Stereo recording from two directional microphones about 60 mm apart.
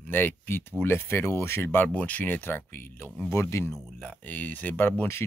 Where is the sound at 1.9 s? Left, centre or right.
Left.